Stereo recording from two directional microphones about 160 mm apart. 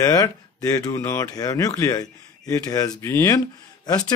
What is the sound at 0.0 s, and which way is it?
Speech, 20° left (ahead or behind).